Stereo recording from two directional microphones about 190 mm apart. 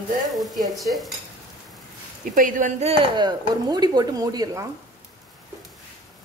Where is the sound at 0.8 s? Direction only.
Centre (ahead or behind).